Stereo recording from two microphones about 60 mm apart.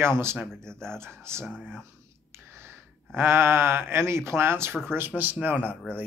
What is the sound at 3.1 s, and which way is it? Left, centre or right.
Speech, right.